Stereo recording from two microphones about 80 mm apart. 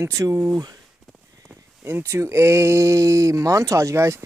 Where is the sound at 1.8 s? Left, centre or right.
Right.